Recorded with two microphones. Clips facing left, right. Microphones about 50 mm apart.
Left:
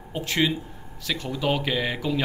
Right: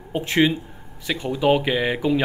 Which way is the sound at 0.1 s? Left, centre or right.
Right.